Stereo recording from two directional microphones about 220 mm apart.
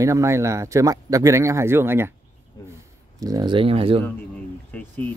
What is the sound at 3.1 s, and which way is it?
Speech, 15° right (ahead or behind).